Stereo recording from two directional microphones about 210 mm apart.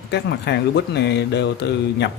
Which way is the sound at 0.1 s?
55° left (ahead or behind).